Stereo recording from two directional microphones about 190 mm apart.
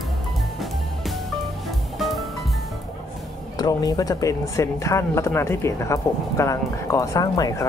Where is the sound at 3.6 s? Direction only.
20° left (ahead or behind).